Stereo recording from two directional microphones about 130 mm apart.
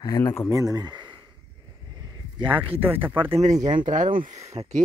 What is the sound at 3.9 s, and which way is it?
Speech, 85° right.